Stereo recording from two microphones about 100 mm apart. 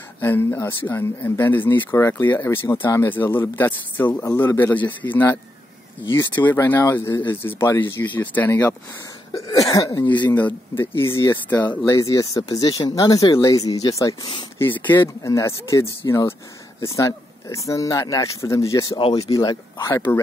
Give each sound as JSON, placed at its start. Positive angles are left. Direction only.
{"t": 0.2, "sound": "speech", "side_deg": 20}
{"t": 4.2, "sound": "speech", "side_deg": 35}
{"t": 4.6, "sound": "a man's voice", "side_deg": 20}
{"t": 9.3, "sound": "speech", "side_deg": 35}
{"t": 10.0, "sound": "speech", "side_deg": 50}
{"t": 10.3, "sound": "a man's voice", "side_deg": 20}
{"t": 11.9, "sound": "speech", "side_deg": 35}
{"t": 14.6, "sound": "speech", "side_deg": 20}
{"t": 15.2, "sound": "speech", "side_deg": 30}